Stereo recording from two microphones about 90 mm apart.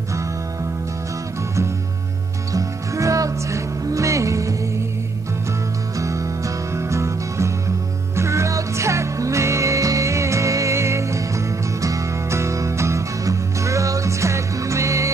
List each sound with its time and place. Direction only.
2.5 s music: 35° right (ahead or behind)
5.9 s music: 35° right (ahead or behind)